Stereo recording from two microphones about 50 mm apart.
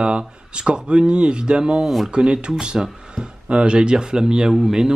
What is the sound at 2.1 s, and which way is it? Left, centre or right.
Speech, centre.